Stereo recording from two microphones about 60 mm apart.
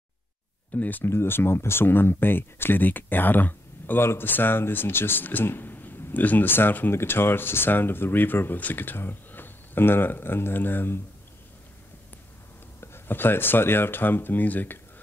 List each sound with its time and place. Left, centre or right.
0.7 s speech: left
1.0 s speech: left
12.8 s speech: left